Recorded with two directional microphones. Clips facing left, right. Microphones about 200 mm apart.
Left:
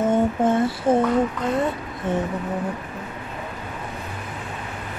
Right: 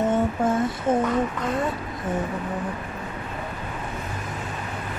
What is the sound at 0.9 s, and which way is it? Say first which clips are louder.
Speech: left 3 dB; 30° left (ahead or behind).